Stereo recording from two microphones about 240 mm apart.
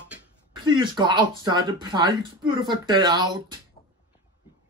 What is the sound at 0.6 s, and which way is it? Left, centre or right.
Speech, centre.